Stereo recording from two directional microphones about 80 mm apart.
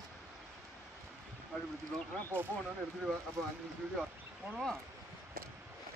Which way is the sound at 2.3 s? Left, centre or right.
Right.